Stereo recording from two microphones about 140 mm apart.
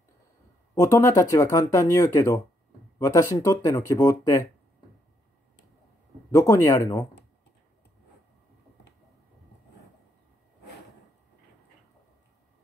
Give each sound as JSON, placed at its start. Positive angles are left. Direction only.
{"t": 0.7, "sound": "speech", "side_deg": 20}
{"t": 6.3, "sound": "speech", "side_deg": 20}